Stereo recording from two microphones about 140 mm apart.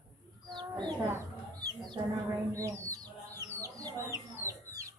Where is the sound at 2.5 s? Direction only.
20° right (ahead or behind).